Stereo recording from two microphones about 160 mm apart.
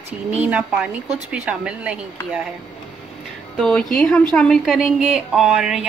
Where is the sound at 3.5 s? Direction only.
5° left (ahead or behind).